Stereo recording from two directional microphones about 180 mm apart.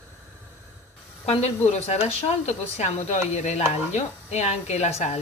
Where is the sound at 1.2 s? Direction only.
35° left (ahead or behind).